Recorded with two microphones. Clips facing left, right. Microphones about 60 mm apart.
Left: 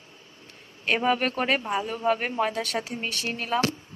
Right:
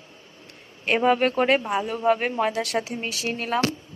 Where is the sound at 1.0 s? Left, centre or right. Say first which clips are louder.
Right 6 dB; centre.